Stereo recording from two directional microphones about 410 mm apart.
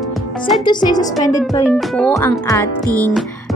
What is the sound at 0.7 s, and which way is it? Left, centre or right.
A woman's voice, centre.